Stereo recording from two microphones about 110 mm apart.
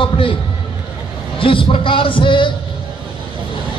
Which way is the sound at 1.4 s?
55° left (ahead or behind).